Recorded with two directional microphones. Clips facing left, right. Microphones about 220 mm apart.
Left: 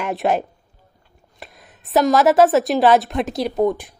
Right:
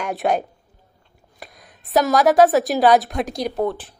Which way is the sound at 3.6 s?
10° left (ahead or behind).